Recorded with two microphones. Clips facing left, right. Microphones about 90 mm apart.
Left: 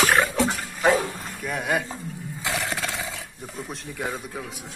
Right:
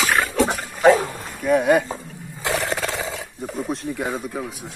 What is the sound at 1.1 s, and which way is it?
Bow-wow, 10° right (ahead or behind).